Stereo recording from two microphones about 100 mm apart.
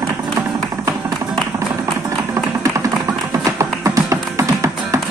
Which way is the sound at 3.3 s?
35° right (ahead or behind).